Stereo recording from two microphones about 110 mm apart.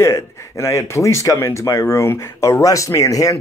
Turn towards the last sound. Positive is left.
turn(degrees=30)  # may be behind; listen again after turning